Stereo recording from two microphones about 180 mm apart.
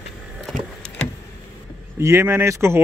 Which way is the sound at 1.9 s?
15° right (ahead or behind).